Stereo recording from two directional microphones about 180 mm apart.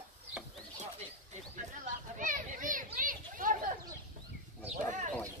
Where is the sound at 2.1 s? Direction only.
45° right (ahead or behind).